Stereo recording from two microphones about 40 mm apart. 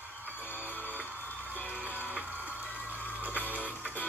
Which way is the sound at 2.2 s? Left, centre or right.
Right.